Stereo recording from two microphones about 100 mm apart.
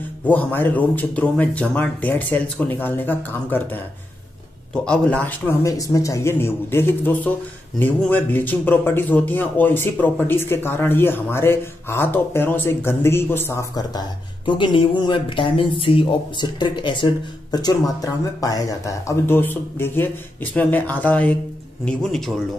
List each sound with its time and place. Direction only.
0.3 s speech: 15° left (ahead or behind)
4.8 s speech: 10° left (ahead or behind)
5.6 s speech: 35° left (ahead or behind)
13.9 s speech: 50° left (ahead or behind); by 21.4 s 15° left (ahead or behind)
21.8 s a man's voice: 5° left (ahead or behind)